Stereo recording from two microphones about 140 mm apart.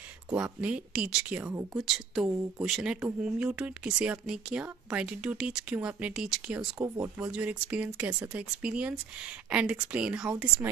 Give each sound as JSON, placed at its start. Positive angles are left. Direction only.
{"t": 0.3, "sound": "speech", "side_deg": -10}
{"t": 1.7, "sound": "speech", "side_deg": 0}